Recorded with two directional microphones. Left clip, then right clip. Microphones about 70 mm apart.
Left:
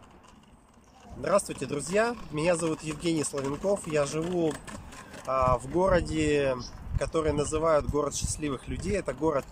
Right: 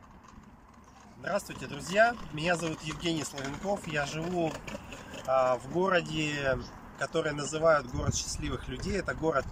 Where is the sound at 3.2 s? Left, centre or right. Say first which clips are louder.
Left 5 dB; centre.